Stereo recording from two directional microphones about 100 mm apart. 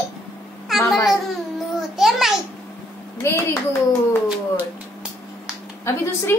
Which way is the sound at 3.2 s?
25° left (ahead or behind).